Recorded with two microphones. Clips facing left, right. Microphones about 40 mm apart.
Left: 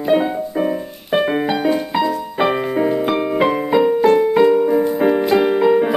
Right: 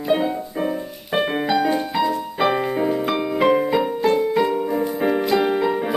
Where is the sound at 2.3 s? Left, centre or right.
Centre.